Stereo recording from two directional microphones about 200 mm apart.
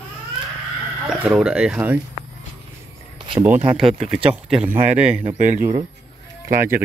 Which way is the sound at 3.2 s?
25° right (ahead or behind).